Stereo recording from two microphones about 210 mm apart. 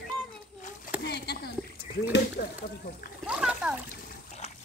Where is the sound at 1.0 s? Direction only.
50° left (ahead or behind).